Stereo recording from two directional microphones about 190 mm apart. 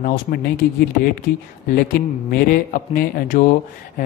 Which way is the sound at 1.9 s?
50° left (ahead or behind).